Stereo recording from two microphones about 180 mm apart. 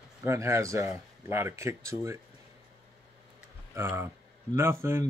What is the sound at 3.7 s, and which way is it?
Speech, 15° right (ahead or behind).